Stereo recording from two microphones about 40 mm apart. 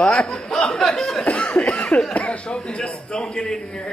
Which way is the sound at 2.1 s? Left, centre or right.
Left.